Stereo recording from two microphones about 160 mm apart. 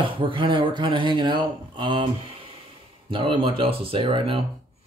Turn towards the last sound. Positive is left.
turn(degrees=-35)  # may be behind; listen again after turning